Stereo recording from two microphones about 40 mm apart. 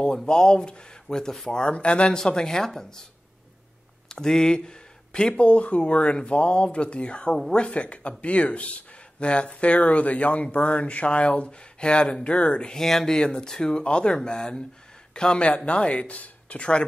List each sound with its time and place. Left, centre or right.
0.0 s speech: centre
1.5 s speech: left
4.1 s speech: centre
12.8 s speech: centre; by 16.8 s left